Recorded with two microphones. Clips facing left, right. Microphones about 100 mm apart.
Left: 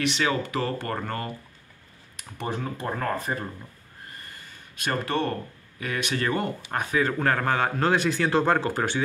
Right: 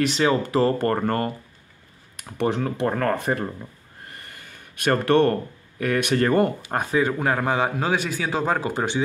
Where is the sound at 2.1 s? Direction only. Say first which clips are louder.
Right 8 dB; 70° right (ahead or behind).